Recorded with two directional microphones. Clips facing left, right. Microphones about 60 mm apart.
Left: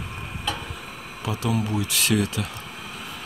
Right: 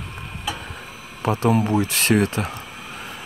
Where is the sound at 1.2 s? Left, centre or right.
Right.